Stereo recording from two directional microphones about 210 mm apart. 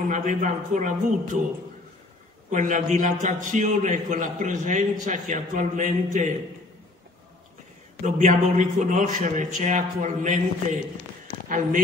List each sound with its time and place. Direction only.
0.1 s a man's voice: 35° right (ahead or behind)
2.5 s a man's voice: 35° right (ahead or behind)
8.0 s a man's voice: 35° right (ahead or behind)
11.4 s speech: 40° right (ahead or behind)